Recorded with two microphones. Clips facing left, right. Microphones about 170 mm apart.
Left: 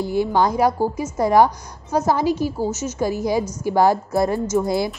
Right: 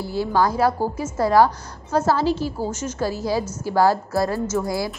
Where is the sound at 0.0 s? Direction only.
20° left (ahead or behind).